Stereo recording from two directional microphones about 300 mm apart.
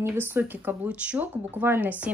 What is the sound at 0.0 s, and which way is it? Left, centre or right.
Speech, centre.